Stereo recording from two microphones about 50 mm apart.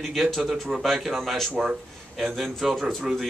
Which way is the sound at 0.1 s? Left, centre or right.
Centre.